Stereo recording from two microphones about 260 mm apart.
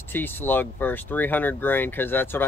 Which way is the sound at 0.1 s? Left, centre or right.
Centre.